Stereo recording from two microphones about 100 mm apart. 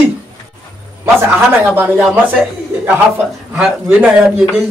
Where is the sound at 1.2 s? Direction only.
20° right (ahead or behind).